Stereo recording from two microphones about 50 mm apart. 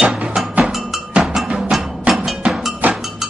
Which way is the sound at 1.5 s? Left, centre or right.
Centre.